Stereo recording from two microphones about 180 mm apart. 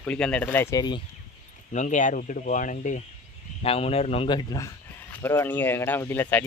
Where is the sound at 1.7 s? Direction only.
40° left (ahead or behind).